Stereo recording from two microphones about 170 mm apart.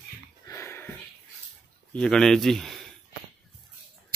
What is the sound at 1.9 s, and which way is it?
Speech, 5° left (ahead or behind).